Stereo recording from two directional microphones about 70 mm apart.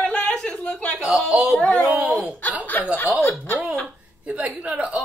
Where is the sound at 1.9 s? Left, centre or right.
Right.